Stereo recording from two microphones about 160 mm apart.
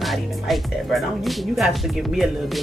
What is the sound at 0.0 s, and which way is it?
Speech, centre (ahead or behind).